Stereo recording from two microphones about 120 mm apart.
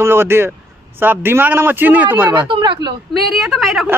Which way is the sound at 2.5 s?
40° right (ahead or behind).